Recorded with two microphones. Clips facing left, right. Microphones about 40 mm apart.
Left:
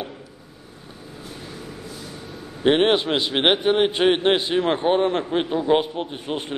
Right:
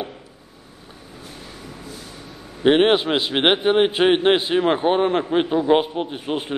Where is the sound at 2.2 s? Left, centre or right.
Centre.